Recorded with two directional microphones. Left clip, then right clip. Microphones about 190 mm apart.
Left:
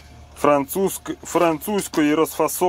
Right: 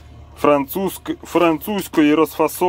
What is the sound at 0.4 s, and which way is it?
Speech, centre (ahead or behind).